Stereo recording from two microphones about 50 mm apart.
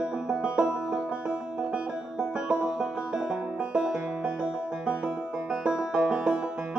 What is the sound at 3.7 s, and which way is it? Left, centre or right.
Banjo, right.